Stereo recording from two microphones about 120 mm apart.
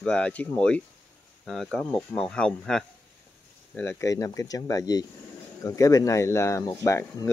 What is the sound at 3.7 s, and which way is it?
Speech, 20° left (ahead or behind).